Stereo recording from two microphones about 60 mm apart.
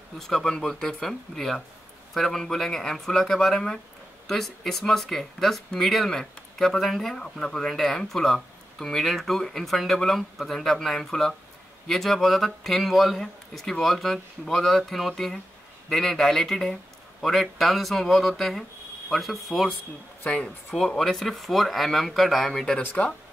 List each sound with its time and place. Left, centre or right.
0.2 s speech: centre
20.7 s speech: centre
22.8 s speech: left